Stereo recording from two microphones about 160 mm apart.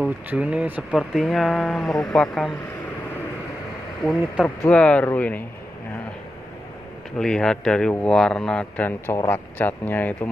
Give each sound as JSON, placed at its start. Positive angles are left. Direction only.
{"t": 0.3, "sound": "speech", "side_deg": -5}
{"t": 4.0, "sound": "speech", "side_deg": 0}
{"t": 7.2, "sound": "speech", "side_deg": 5}